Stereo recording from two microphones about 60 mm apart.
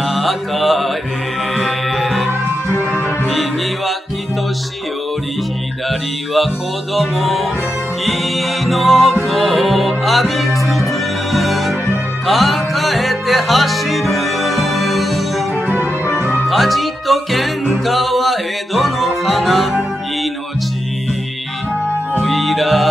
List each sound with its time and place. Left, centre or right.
0.0 s mantra: centre
1.5 s music: centre
3.3 s music: centre
5.9 s music: centre
16.4 s music: centre
22.2 s music: centre